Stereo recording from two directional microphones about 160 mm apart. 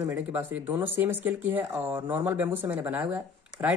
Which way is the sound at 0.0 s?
10° right (ahead or behind).